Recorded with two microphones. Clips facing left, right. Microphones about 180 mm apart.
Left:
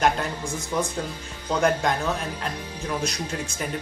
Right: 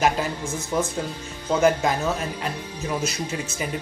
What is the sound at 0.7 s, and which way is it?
Speech, 15° right (ahead or behind).